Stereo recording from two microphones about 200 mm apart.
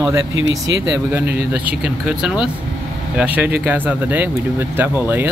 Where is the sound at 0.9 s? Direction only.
10° right (ahead or behind).